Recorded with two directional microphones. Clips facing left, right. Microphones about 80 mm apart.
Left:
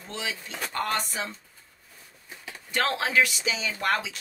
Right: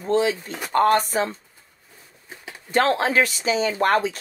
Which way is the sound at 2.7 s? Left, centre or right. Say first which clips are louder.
Right 7 dB; right.